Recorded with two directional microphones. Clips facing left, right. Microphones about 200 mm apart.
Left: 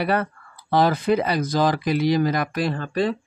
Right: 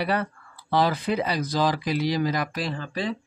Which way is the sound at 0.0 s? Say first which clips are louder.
Left 3 dB; 50° left (ahead or behind).